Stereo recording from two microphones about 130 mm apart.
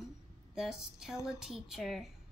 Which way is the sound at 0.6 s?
5° right (ahead or behind).